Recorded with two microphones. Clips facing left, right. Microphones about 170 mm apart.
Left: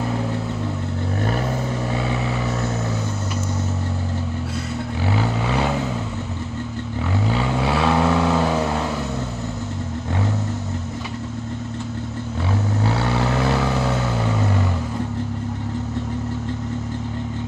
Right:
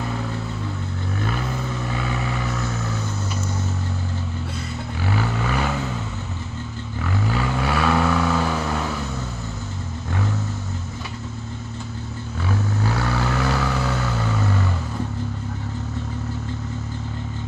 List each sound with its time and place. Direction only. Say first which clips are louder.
1.9 s vehicle: left 3 dB; 30° left (ahead or behind)
5.0 s vehicle: left 1 dB; 25° left (ahead or behind)
7.2 s vehicle: left 2 dB; 25° left (ahead or behind)
12.8 s vehicle: left 3 dB; 25° left (ahead or behind)